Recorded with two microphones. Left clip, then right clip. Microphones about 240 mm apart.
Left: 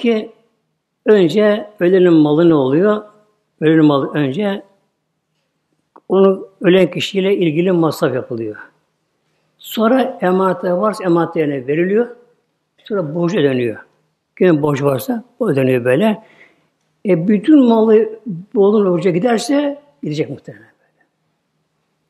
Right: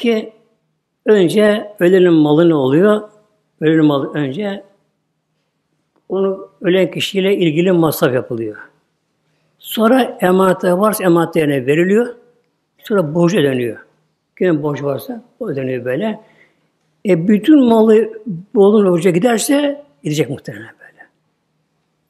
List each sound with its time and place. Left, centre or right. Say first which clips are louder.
0.0 s speech: even; centre
3.5 s a man's voice: left 1 dB; centre
5.9 s speech: left 5 dB; centre
13.5 s a man's voice: even; centre
17.0 s speech: right 1 dB; centre